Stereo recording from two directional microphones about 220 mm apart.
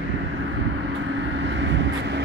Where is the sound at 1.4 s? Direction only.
55° right (ahead or behind).